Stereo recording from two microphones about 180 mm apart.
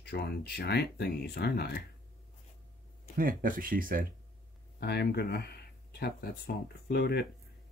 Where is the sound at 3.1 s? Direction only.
50° right (ahead or behind).